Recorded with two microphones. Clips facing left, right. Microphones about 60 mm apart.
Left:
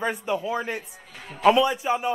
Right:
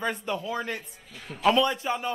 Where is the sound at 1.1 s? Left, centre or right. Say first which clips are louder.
Left 4 dB; left.